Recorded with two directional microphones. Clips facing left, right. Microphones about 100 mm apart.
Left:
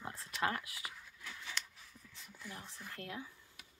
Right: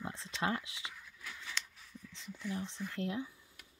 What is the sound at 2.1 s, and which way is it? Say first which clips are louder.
Speech: right 9 dB; 5° left (ahead or behind).